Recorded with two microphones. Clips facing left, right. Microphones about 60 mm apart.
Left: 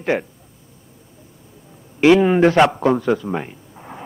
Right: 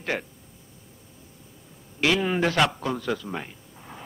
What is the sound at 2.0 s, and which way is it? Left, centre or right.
Speech, left.